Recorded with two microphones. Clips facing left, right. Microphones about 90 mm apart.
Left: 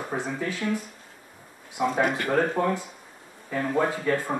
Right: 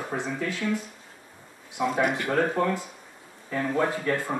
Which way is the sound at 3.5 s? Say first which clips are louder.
Left 1 dB; 10° left (ahead or behind).